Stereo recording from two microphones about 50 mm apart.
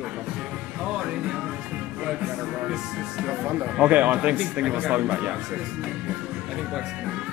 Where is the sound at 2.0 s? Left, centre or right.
Centre; by 5.3 s right.